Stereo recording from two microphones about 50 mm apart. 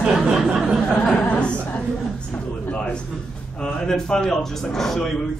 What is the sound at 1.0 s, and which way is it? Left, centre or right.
A man's voice, left.